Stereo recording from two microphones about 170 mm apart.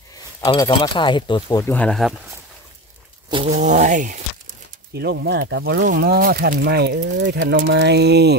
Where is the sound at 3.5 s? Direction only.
45° right (ahead or behind).